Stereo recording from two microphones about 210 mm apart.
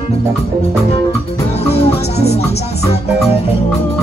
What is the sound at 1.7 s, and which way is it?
Music, 30° left (ahead or behind).